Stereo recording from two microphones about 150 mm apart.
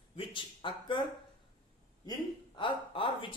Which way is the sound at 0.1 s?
35° left (ahead or behind).